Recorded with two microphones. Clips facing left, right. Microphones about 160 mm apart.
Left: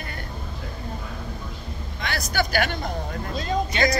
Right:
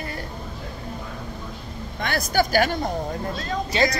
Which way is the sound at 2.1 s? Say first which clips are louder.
Right 4 dB; 40° right (ahead or behind).